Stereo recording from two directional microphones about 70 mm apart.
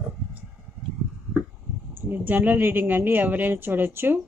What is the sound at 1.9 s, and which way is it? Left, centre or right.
A woman's voice, right.